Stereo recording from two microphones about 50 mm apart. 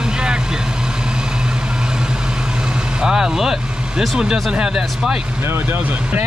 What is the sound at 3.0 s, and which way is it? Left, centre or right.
Speech, centre.